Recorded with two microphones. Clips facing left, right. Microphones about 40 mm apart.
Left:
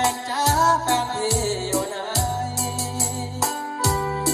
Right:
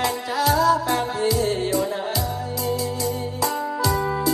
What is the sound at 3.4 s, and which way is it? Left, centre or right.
Music, left.